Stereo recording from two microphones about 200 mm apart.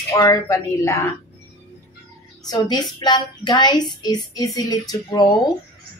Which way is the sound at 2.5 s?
20° left (ahead or behind).